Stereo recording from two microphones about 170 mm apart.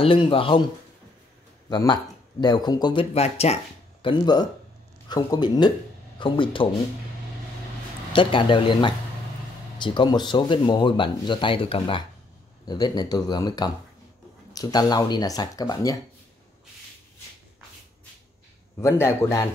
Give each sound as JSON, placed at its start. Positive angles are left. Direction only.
{"t": 0.0, "sound": "speech", "side_deg": 30}
{"t": 1.7, "sound": "speech", "side_deg": 25}
{"t": 4.0, "sound": "speech", "side_deg": 25}
{"t": 8.1, "sound": "speech", "side_deg": 30}
{"t": 18.8, "sound": "a man's voice", "side_deg": 15}